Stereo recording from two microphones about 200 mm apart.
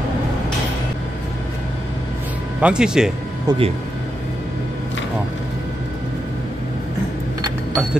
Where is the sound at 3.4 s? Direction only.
25° right (ahead or behind).